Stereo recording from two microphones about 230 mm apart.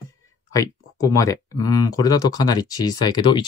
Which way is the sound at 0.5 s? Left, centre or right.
Centre.